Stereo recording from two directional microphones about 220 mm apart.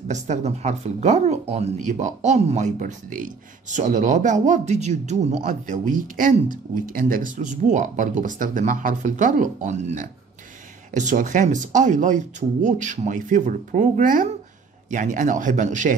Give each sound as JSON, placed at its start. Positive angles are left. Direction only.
{"t": 0.1, "sound": "speech", "side_deg": -30}